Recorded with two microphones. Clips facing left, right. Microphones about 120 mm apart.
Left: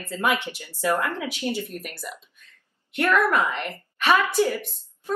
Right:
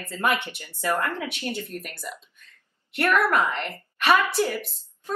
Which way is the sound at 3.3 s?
10° left (ahead or behind).